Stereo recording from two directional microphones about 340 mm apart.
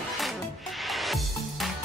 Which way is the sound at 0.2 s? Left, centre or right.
Centre.